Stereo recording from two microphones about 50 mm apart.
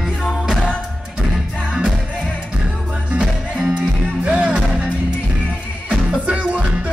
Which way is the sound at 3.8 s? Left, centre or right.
Right.